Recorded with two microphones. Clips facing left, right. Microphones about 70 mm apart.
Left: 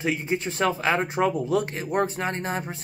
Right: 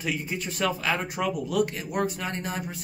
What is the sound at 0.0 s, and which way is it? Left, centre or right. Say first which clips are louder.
A man's voice: left 5 dB; left.